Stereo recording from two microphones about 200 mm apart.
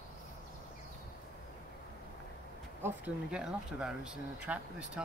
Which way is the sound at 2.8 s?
5° right (ahead or behind).